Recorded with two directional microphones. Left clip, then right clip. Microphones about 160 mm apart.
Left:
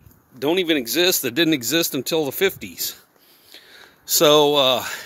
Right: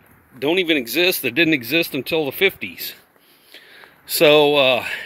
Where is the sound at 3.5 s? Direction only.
25° left (ahead or behind).